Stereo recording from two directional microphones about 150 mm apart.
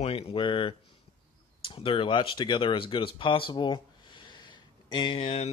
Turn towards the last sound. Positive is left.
turn(degrees=45)  # may be behind; listen again after turning